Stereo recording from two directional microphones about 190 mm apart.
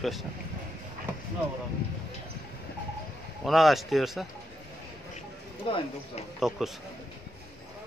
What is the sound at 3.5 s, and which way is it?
Speech, centre (ahead or behind).